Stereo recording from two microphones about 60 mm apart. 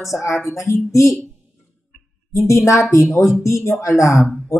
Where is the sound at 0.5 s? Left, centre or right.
Left.